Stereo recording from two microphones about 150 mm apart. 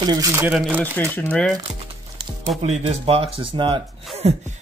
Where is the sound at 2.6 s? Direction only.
45° right (ahead or behind).